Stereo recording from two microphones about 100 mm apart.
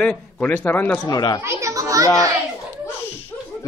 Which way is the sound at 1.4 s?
30° right (ahead or behind).